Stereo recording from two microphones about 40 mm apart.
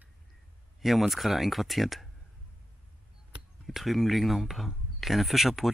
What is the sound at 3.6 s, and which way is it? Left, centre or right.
Speech, centre.